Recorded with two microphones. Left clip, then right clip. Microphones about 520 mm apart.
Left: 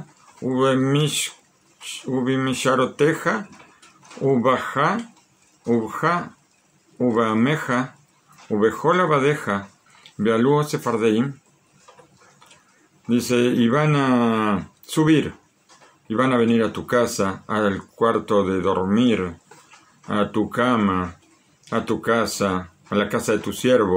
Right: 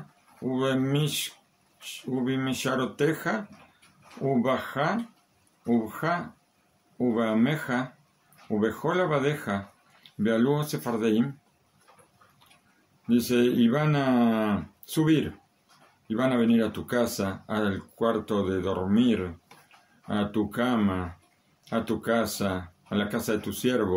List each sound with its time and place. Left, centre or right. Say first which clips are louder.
0.6 s speech: left 8 dB; right
4.4 s speech: left 7 dB; right
6.0 s speech: left 7 dB; right
13.1 s speech: left 4 dB; right